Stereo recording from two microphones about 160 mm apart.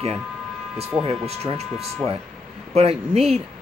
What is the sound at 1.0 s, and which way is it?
Speech, 40° right (ahead or behind).